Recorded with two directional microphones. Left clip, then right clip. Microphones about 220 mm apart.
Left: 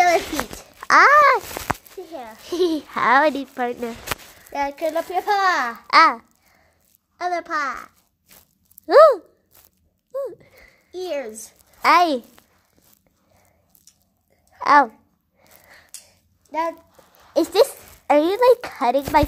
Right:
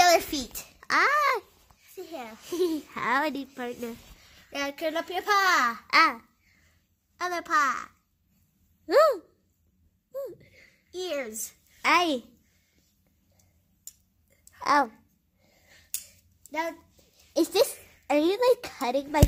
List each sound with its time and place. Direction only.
0.0 s a sound: 45° right (ahead or behind)
0.7 s a child's voice: centre (ahead or behind)
2.0 s a sound: 50° right (ahead or behind)
2.4 s a child's voice: 15° right (ahead or behind)
4.5 s speech: 45° right (ahead or behind)
5.9 s a child's voice: centre (ahead or behind)
7.2 s a child's voice: 40° right (ahead or behind)
8.8 s speech: centre (ahead or behind)
10.1 s a sound: centre (ahead or behind)
10.9 s a child's voice: 40° right (ahead or behind)
11.8 s a child's voice: centre (ahead or behind)
14.6 s speech: 10° left (ahead or behind)
16.4 s a sound: 45° right (ahead or behind)
17.3 s speech: 10° left (ahead or behind)